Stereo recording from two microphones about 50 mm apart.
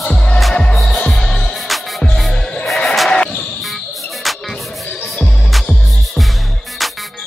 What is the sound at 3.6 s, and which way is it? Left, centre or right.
Cricket, centre.